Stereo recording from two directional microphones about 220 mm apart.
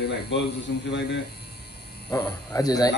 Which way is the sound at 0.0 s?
50° left (ahead or behind).